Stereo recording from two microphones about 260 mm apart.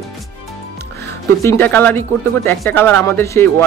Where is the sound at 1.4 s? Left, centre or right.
Centre.